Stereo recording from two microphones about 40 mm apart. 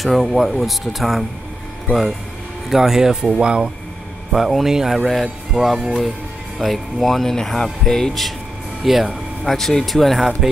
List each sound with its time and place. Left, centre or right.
0.0 s speech: centre
2.7 s speech: centre
4.3 s speech: centre
9.4 s speech: centre